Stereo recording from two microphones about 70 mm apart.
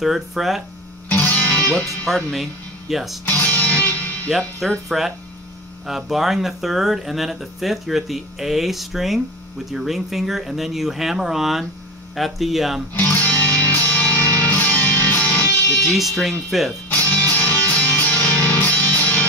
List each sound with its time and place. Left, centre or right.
0.0 s speech: centre
1.0 s music: left
2.0 s speech: centre
3.3 s music: left
4.6 s speech: centre
12.9 s music: left
15.8 s speech: centre
16.9 s music: left